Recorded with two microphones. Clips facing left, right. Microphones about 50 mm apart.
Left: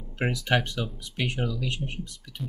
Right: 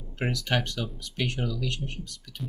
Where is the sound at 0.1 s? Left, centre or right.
Centre.